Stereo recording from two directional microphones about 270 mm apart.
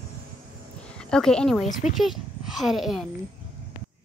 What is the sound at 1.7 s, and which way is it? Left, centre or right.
Speech, left.